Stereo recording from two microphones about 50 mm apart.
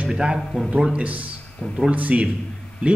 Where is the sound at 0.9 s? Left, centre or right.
Right.